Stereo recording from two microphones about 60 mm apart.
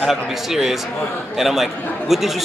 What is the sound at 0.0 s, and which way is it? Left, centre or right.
A man's voice, centre.